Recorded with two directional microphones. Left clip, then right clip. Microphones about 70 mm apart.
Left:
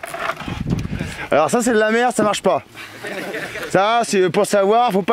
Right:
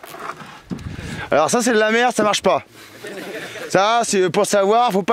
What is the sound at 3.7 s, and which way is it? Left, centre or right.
Speech, right.